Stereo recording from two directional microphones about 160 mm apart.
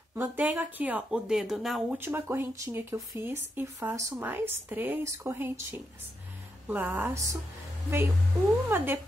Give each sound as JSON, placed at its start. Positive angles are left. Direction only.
{"t": 0.1, "sound": "speech", "side_deg": -10}
{"t": 2.0, "sound": "speech", "side_deg": -15}
{"t": 8.6, "sound": "speech", "side_deg": -15}